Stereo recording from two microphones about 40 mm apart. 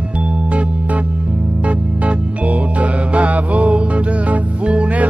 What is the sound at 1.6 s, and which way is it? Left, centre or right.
Music, right.